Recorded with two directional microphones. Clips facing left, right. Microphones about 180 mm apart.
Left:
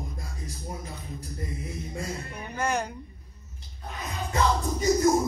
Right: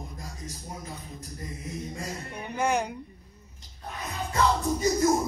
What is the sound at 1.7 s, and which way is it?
Speech, 15° right (ahead or behind).